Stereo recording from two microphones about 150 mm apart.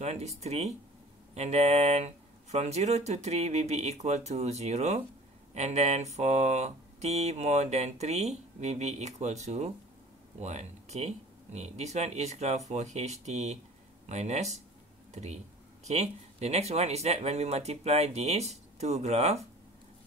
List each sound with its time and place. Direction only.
0.0 s speech: 45° right (ahead or behind)
15.8 s speech: 45° right (ahead or behind)